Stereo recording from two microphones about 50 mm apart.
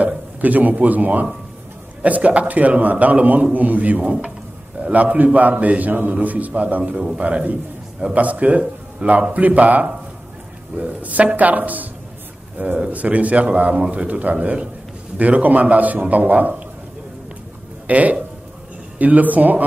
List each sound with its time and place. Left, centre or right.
0.0 s a man's voice: right
17.8 s a man's voice: right